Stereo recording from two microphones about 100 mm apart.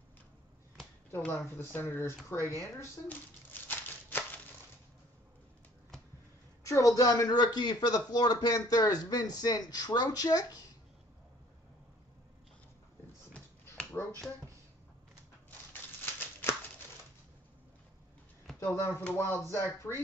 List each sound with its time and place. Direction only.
1.1 s speech: 20° left (ahead or behind)
3.6 s a sound: 20° left (ahead or behind)
6.6 s speech: 30° left (ahead or behind)
14.0 s speech: 25° left (ahead or behind)
15.7 s a sound: 20° left (ahead or behind)
18.6 s speech: 25° left (ahead or behind)